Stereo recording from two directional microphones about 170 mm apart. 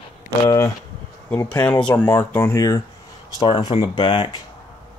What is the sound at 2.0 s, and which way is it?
Speech, 10° left (ahead or behind).